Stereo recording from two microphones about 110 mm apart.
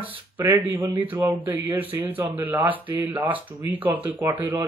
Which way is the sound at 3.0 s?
40° right (ahead or behind).